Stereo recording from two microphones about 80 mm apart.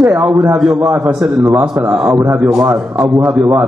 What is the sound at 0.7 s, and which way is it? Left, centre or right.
Speech, right.